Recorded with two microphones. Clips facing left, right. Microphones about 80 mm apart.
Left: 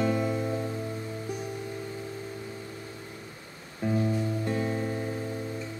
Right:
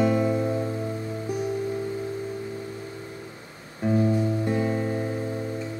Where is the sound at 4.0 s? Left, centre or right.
Right.